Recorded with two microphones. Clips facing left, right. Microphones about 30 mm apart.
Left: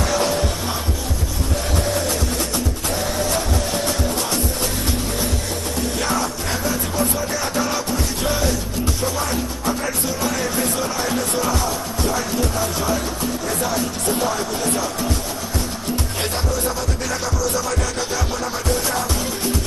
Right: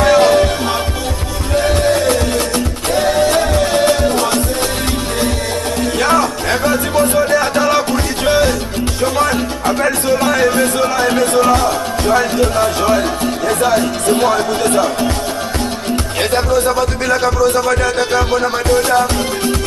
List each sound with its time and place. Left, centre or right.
0.0 s music: right
1.5 s music: right
5.8 s music: right
16.2 s speech: right